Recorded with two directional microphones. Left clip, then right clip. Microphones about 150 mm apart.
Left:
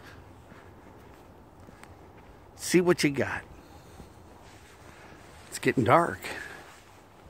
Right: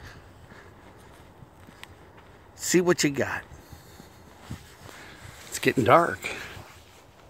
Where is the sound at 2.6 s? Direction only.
15° left (ahead or behind).